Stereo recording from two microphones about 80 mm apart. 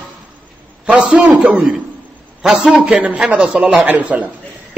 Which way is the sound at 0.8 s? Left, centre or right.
Centre.